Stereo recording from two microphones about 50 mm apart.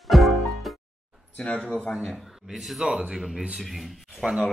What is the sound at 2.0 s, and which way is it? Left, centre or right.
Speech, centre.